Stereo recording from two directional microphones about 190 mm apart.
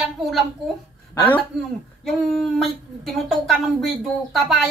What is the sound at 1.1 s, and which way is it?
Speech, 10° left (ahead or behind).